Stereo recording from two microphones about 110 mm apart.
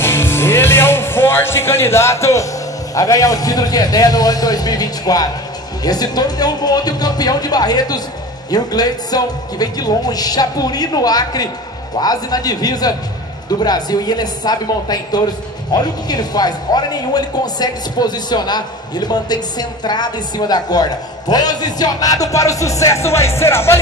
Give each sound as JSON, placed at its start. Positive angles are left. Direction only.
{"t": 0.0, "sound": "music", "side_deg": 20}
{"t": 2.9, "sound": "speech", "side_deg": 30}